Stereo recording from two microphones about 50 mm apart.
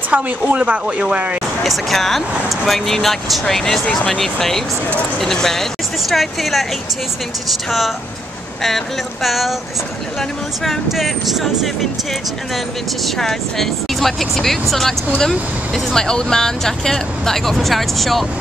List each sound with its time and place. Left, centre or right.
0.1 s speech: right
1.6 s speech: centre
8.6 s speech: centre
10.6 s speech: centre
13.0 s speech: centre